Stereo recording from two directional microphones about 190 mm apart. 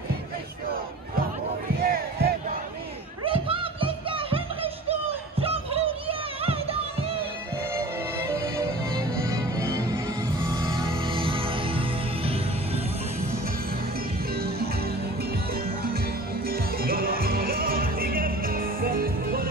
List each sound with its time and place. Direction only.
1.8 s basketball bounce: 50° right (ahead or behind)
3.3 s music: 30° right (ahead or behind)
5.4 s music: 30° right (ahead or behind)
7.7 s music: 15° right (ahead or behind)
16.4 s music: 50° right (ahead or behind)